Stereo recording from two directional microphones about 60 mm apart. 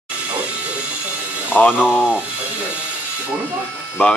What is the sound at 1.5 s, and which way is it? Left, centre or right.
Speech, left.